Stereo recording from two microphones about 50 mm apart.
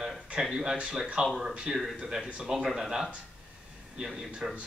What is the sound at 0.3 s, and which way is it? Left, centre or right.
Speech, centre.